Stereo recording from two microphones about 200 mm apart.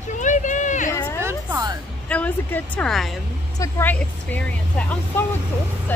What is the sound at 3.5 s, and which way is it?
A woman's voice, 15° left (ahead or behind).